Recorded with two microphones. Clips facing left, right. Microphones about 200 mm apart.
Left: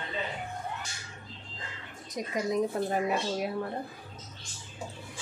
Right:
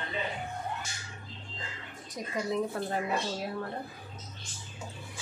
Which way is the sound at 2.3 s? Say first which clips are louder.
Left 2 dB; 20° left (ahead or behind).